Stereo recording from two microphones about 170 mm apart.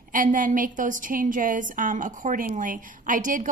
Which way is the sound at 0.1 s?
50° right (ahead or behind).